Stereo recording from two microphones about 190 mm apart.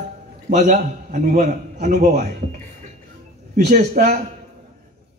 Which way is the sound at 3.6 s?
40° right (ahead or behind).